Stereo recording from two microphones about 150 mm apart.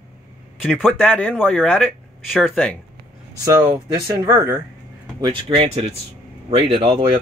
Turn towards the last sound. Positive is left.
turn(degrees=-40)  # may be behind; listen again after turning